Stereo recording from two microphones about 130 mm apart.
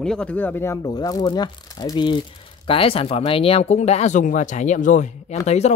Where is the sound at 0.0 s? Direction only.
5° left (ahead or behind).